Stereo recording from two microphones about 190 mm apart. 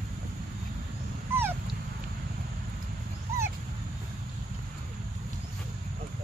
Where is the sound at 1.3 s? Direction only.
10° right (ahead or behind).